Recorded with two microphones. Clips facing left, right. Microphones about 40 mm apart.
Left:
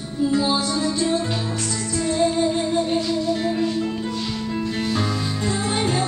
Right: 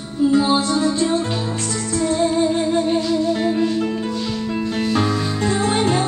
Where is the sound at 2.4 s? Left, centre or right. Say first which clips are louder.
Right 3 dB; centre.